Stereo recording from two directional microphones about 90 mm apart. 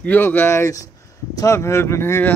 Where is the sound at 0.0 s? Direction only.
20° left (ahead or behind).